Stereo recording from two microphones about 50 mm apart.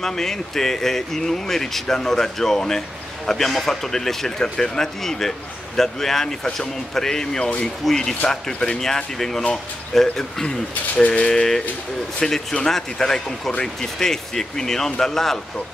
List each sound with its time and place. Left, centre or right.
0.0 s speech: centre
7.8 s speech: centre
12.2 s speech: centre